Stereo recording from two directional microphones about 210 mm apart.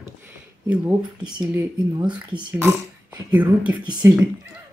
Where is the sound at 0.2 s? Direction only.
10° right (ahead or behind).